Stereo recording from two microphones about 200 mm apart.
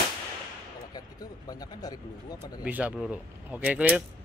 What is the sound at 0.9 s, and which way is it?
Speech, 20° left (ahead or behind).